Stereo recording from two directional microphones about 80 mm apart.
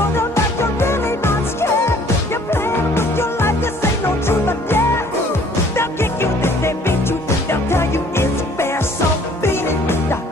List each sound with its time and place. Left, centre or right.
0.1 s music: left